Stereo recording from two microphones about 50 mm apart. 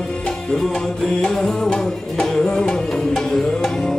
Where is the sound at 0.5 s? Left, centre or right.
Centre.